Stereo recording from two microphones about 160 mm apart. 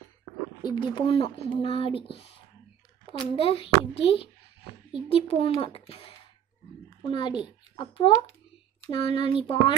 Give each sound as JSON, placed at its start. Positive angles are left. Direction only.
{"t": 0.6, "sound": "speech", "side_deg": 30}
{"t": 3.1, "sound": "speech", "side_deg": 35}
{"t": 7.0, "sound": "a child's voice", "side_deg": 30}